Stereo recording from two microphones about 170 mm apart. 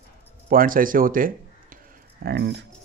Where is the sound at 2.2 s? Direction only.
85° right.